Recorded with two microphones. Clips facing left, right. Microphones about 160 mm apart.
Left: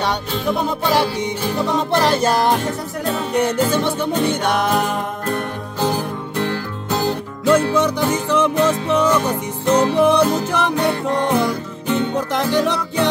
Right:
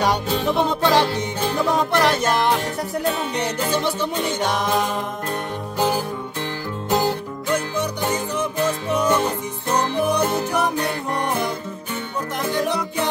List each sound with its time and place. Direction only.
0.6 s music: 5° left (ahead or behind)
1.9 s music: 30° left (ahead or behind)
3.3 s music: 55° left (ahead or behind)
7.4 s music: 90° left
11.9 s music: 85° left